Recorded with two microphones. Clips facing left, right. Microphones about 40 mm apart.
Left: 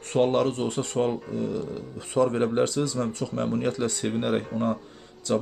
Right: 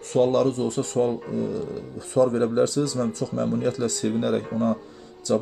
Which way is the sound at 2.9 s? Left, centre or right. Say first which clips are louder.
Right 2 dB; left.